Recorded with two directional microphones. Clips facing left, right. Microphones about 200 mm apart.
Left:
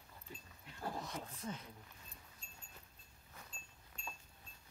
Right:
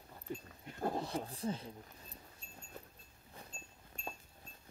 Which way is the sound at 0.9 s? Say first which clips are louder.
Right 7 dB; 30° right (ahead or behind).